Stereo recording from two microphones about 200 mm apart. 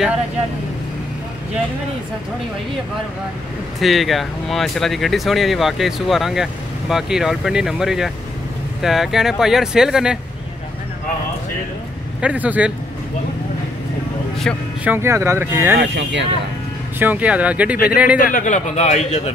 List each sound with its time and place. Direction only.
3.8 s speech: centre (ahead or behind)
12.2 s speech: 5° right (ahead or behind)
14.9 s speech: 15° right (ahead or behind)
15.8 s speech: 65° right (ahead or behind)
17.0 s speech: 10° right (ahead or behind)
18.2 s a man's voice: 40° left (ahead or behind)